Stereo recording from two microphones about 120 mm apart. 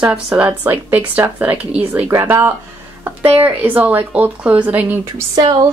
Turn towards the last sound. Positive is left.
turn(degrees=-35)  # may be behind; listen again after turning